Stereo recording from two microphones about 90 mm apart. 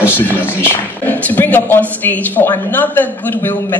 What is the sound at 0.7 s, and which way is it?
A woman's voice, 20° left (ahead or behind).